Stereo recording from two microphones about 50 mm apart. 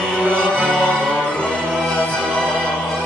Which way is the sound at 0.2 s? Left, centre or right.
Centre.